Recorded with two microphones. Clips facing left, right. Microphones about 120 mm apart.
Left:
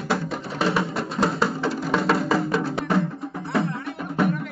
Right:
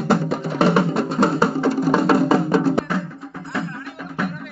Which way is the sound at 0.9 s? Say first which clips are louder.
Right 5 dB; centre (ahead or behind).